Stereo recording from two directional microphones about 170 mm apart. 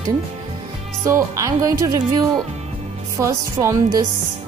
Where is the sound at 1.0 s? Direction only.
20° right (ahead or behind).